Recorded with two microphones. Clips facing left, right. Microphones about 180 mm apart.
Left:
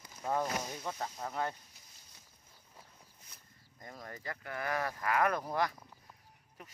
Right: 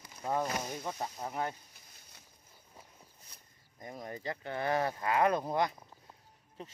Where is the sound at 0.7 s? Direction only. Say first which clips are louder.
Right 2 dB; 15° right (ahead or behind).